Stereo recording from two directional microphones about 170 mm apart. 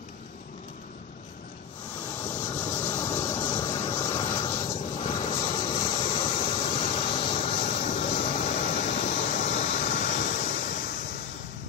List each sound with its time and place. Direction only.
2.4 s vehicle: 20° left (ahead or behind)
5.8 s a sound: 30° left (ahead or behind)
8.6 s vehicle: 45° left (ahead or behind)